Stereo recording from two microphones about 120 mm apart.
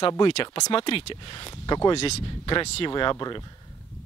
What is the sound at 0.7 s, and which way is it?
Speech, 50° left (ahead or behind).